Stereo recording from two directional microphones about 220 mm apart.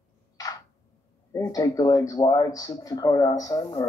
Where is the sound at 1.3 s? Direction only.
15° left (ahead or behind).